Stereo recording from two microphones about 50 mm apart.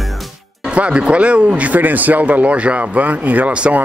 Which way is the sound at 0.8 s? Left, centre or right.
Right.